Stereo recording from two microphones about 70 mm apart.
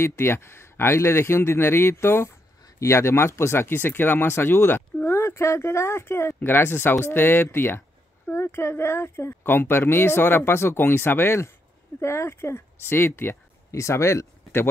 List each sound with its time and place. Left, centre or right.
0.0 s speech: left
13.7 s speech: left